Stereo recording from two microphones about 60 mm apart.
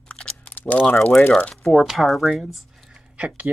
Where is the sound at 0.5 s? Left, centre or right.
Left.